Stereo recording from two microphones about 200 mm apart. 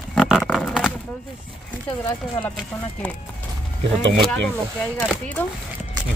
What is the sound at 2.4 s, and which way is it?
Speech, 5° left (ahead or behind).